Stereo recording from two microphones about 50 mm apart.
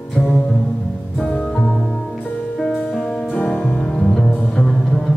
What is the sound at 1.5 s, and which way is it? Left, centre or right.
Music, centre.